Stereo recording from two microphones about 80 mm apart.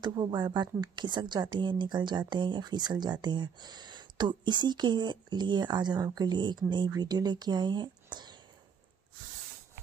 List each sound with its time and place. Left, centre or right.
0.0 s speech: right
6.0 s a woman's voice: right
6.9 s speech: right